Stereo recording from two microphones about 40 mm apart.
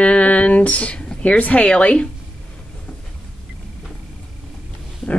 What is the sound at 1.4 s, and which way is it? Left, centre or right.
Speech, left.